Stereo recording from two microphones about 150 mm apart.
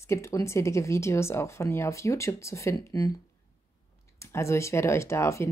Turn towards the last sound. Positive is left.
turn(degrees=20)  # may be behind; listen again after turning